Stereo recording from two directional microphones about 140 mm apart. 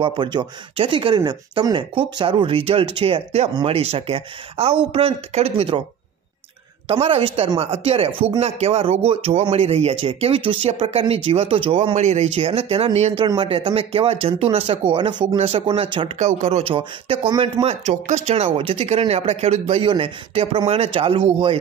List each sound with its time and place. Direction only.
0.0 s speech: 35° right (ahead or behind)
6.9 s speech: 45° right (ahead or behind)
11.9 s speech: 55° right (ahead or behind); by 16.1 s 40° right (ahead or behind)
16.2 s speech: 50° right (ahead or behind)